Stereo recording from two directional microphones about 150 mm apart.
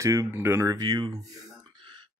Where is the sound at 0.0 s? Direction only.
20° right (ahead or behind).